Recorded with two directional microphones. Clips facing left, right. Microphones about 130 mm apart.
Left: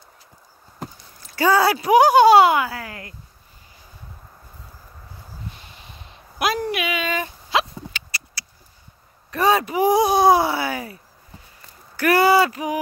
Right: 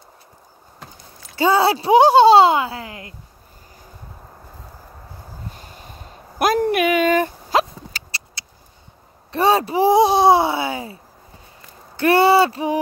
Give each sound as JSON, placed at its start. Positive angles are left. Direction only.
{"t": 1.3, "sound": "speech", "side_deg": -20}
{"t": 5.5, "sound": "a sound", "side_deg": -45}
{"t": 9.3, "sound": "speech", "side_deg": -30}
{"t": 12.0, "sound": "speech", "side_deg": -30}